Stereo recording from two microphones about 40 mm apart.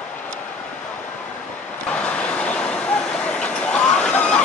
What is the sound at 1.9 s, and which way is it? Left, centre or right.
Vehicle, left.